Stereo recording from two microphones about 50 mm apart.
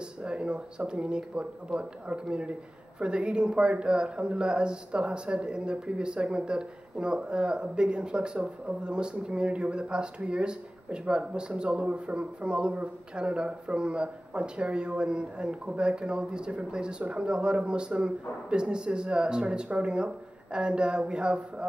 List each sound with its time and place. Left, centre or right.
0.2 s a man's voice: centre